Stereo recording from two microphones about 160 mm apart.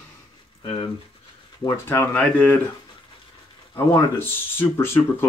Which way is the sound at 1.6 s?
15° left (ahead or behind).